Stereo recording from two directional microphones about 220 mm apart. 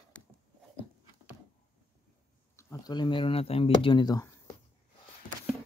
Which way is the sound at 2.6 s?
15° left (ahead or behind).